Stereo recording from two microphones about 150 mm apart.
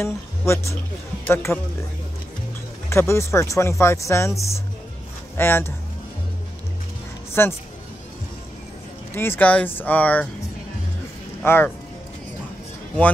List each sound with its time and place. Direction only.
0.0 s speech: 20° left (ahead or behind)
2.9 s speech: 20° left (ahead or behind)
5.4 s speech: 15° left (ahead or behind)
7.4 s speech: 15° left (ahead or behind)
9.1 s speech: 15° left (ahead or behind)
11.4 s speech: 15° left (ahead or behind)